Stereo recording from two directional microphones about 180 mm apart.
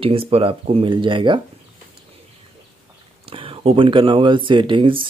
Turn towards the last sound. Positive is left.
turn(degrees=-30)  # may be behind; listen again after turning